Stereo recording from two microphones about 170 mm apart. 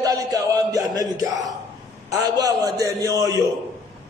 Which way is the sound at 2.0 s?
20° right (ahead or behind).